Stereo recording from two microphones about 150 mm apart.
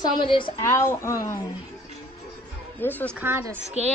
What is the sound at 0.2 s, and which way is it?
Speech, 35° left (ahead or behind).